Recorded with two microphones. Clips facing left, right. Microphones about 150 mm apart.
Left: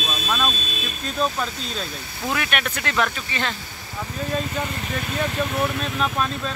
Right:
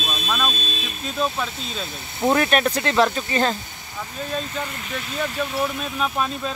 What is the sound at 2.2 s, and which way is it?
Speech, 35° right (ahead or behind).